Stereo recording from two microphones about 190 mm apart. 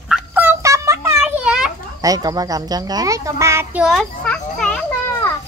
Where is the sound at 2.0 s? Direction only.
20° right (ahead or behind).